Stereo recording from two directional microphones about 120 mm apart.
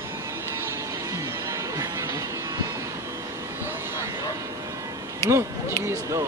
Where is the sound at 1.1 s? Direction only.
25° right (ahead or behind).